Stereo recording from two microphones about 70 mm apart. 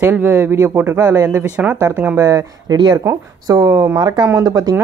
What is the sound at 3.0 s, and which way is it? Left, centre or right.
Speech, right.